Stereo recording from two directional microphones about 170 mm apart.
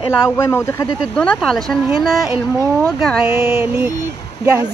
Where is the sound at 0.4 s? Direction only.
15° left (ahead or behind).